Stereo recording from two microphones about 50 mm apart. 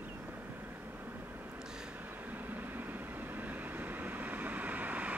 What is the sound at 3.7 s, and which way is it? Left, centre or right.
Vehicle, right.